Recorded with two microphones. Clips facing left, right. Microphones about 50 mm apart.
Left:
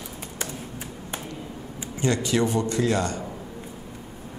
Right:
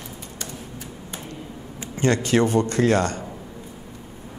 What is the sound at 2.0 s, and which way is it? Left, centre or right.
Speech, right.